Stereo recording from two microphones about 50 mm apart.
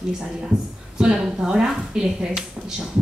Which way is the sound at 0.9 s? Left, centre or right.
Centre.